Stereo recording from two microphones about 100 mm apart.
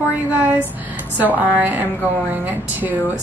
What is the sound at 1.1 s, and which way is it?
A woman's voice, 15° right (ahead or behind).